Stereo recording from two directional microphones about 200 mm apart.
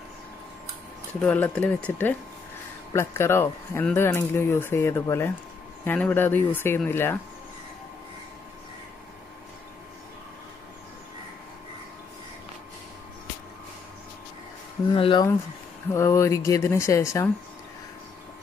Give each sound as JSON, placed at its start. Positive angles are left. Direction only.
{"t": 1.2, "sound": "speech", "side_deg": 5}
{"t": 15.0, "sound": "speech", "side_deg": 25}
{"t": 15.9, "sound": "speech", "side_deg": 15}